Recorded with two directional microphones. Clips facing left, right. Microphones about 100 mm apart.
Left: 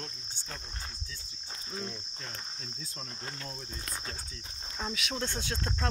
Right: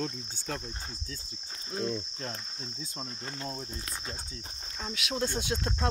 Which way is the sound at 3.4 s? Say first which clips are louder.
Right 6 dB; 25° right (ahead or behind).